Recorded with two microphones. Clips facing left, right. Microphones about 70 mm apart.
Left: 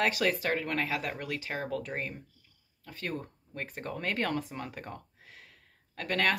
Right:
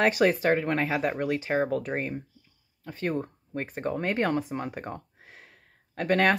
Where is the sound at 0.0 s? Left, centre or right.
Right.